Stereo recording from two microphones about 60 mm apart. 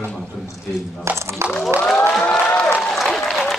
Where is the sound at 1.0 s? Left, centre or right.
Right.